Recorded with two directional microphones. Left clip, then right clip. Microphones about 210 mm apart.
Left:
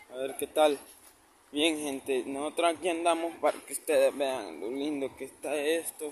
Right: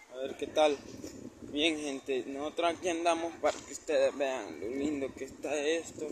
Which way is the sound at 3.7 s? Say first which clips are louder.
Left 5 dB; 30° left (ahead or behind).